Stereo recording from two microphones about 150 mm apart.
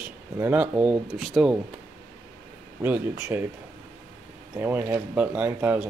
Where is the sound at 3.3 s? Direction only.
15° right (ahead or behind).